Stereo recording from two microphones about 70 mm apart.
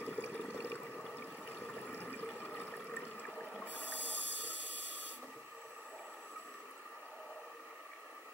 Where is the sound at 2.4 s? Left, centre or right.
Left.